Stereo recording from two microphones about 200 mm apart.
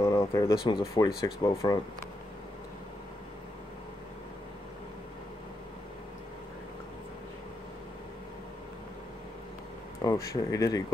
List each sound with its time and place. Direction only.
0.0 s speech: 15° left (ahead or behind)
10.0 s speech: 15° left (ahead or behind)